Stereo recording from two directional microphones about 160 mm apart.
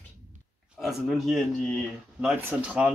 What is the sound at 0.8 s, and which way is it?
Speech, centre (ahead or behind).